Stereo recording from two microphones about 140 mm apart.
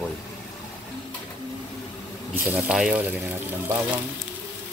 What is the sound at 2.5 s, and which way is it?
Speech, 5° right (ahead or behind).